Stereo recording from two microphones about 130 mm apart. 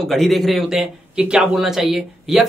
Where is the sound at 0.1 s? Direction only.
Centre (ahead or behind).